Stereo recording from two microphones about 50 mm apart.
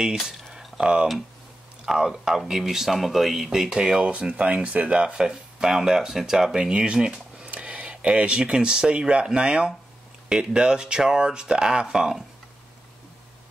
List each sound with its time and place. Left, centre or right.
0.3 s a sound: centre
1.9 s speech: centre
7.5 s speech: right